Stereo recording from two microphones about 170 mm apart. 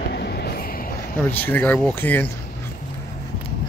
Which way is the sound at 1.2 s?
10° left (ahead or behind).